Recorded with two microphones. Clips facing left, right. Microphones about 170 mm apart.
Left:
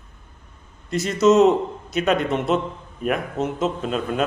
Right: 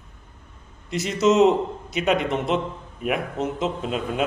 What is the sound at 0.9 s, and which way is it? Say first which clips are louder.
A man's voice: left 3 dB; 15° right (ahead or behind).